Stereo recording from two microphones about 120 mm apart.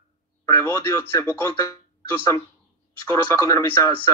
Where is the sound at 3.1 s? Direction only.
25° left (ahead or behind).